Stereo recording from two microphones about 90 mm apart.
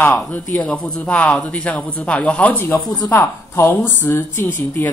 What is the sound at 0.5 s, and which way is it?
A woman's voice, 10° left (ahead or behind).